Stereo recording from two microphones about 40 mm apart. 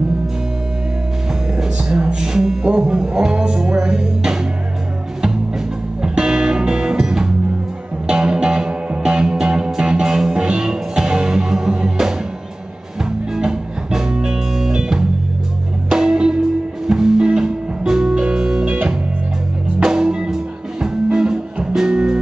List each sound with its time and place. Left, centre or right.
1.6 s music: right
6.0 s music: right
13.3 s music: centre